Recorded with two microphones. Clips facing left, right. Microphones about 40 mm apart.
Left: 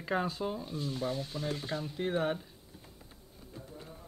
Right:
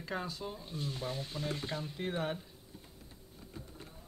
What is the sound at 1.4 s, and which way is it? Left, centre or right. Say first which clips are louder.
Speech: left 2 dB; centre.